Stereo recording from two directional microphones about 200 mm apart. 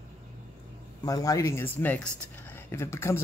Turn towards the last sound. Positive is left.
turn(degrees=15)  # may be behind; listen again after turning